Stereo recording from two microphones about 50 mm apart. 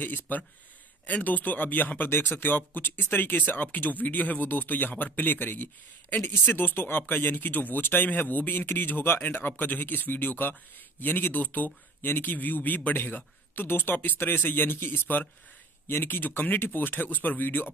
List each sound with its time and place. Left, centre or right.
0.0 s speech: left